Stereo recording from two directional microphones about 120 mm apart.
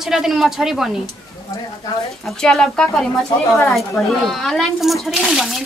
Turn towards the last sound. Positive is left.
turn(degrees=0)  # may be behind; listen again after turning